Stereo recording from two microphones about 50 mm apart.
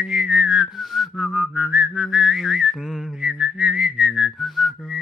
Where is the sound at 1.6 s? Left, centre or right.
Right.